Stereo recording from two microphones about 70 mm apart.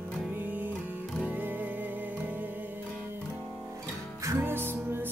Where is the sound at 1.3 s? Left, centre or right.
Right.